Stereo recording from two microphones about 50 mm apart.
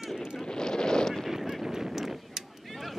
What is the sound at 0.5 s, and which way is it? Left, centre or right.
Wind noise, centre.